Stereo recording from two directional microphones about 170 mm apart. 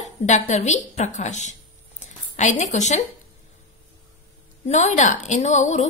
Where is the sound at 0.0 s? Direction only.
45° left (ahead or behind).